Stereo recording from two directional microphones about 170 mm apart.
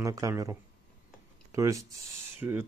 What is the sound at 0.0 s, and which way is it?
Speech, 20° right (ahead or behind).